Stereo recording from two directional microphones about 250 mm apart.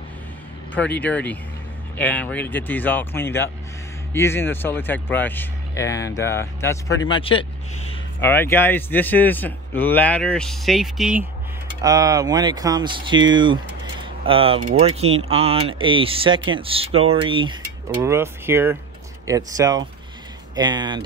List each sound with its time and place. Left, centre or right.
0.7 s speech: centre
8.2 s speech: centre
11.8 s speech: centre